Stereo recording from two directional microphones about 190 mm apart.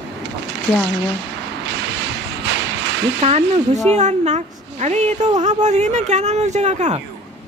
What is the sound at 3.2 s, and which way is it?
Speech, 35° right (ahead or behind).